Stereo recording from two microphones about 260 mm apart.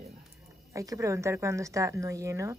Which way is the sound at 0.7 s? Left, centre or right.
Centre.